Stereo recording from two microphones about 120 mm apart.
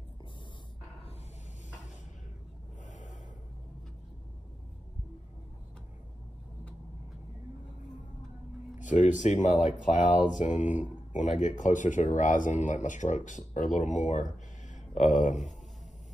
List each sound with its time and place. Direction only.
8.7 s speech: 90° left